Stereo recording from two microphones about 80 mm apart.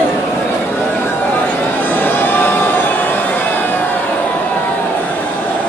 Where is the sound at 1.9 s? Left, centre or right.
Left.